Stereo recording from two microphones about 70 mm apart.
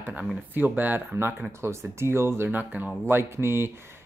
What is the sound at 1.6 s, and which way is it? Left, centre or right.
Speech, right.